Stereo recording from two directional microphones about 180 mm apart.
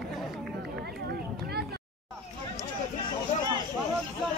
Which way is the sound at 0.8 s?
60° right (ahead or behind).